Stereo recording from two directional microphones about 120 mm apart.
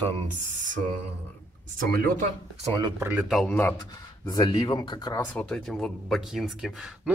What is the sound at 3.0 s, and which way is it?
Speech, 15° right (ahead or behind).